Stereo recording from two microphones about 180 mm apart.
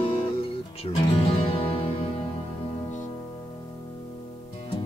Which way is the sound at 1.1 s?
30° left (ahead or behind).